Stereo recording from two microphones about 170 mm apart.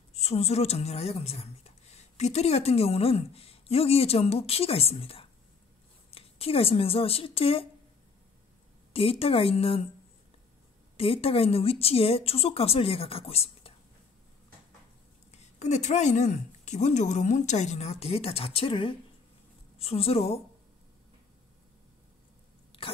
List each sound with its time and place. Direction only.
0.1 s a woman's voice: 40° left (ahead or behind)
8.9 s a woman's voice: 35° left (ahead or behind)
11.0 s a woman's voice: 35° left (ahead or behind)
15.3 s a woman's voice: 45° left (ahead or behind)
22.7 s a sound: 30° left (ahead or behind)